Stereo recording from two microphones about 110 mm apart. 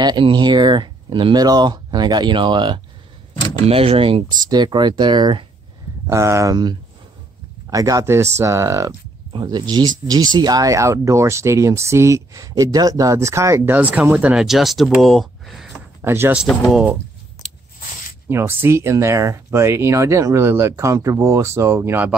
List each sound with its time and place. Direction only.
0.0 s speech: 40° right (ahead or behind)
3.6 s speech: 60° right (ahead or behind)
4.5 s speech: 40° right (ahead or behind)
6.0 s speech: 25° right (ahead or behind)
9.3 s speech: 45° right (ahead or behind); by 13.7 s 25° right (ahead or behind)
13.7 s speech: 15° right (ahead or behind)
16.0 s speech: 20° right (ahead or behind)
18.3 s speech: 20° right (ahead or behind)